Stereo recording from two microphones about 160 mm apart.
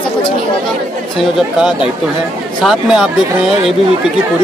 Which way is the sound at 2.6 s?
Centre (ahead or behind).